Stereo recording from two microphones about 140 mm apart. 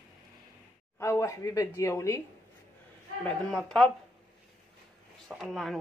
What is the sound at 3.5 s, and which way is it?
Speech, centre (ahead or behind).